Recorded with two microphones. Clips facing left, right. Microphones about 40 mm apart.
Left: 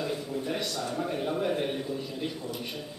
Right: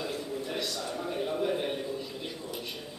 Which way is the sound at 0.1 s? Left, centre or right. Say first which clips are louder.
Left 3 dB; centre.